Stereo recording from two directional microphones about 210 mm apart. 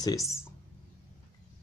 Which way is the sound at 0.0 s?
15° left (ahead or behind).